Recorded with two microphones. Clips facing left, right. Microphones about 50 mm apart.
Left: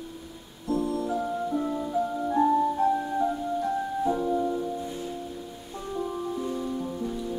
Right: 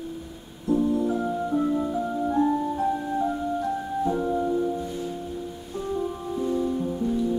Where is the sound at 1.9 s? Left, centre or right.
Centre.